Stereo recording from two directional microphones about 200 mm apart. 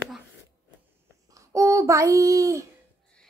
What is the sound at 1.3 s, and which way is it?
A child's voice, 15° right (ahead or behind).